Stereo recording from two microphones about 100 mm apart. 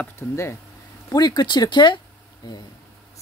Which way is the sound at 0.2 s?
30° left (ahead or behind).